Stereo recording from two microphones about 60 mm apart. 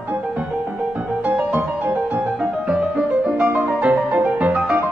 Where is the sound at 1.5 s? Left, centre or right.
Right.